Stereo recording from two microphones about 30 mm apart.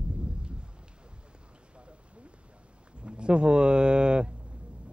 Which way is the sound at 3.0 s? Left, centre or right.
Right.